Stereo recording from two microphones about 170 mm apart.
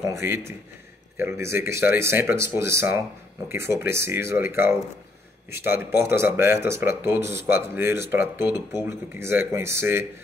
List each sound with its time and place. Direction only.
0.0 s speech: 15° right (ahead or behind)